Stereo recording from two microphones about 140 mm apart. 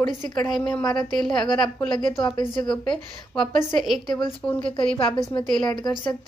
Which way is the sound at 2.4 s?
35° left (ahead or behind).